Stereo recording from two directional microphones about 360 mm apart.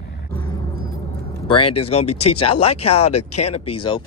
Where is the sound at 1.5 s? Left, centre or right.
Centre.